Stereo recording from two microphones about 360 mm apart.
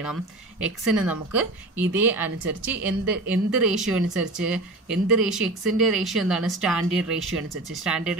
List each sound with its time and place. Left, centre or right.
0.0 s speech: centre